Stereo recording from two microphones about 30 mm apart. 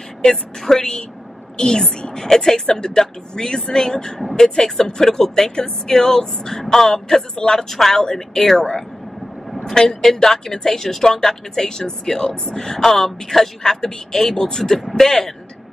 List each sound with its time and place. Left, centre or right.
0.7 s a woman's voice: centre
7.7 s speech: centre
12.5 s a woman's voice: centre
14.8 s speech: centre
15.0 s speech: centre